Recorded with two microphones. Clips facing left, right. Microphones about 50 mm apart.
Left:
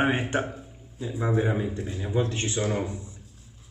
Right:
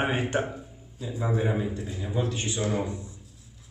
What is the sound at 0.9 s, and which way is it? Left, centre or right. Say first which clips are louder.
Speech: left 2 dB; left.